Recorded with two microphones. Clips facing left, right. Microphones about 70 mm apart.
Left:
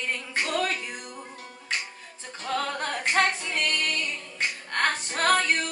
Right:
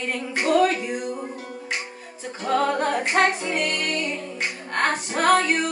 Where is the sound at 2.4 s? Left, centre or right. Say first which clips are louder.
Right 8 dB; centre.